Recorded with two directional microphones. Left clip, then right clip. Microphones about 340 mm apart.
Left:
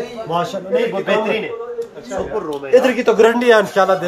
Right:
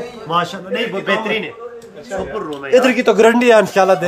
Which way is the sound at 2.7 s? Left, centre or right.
Right.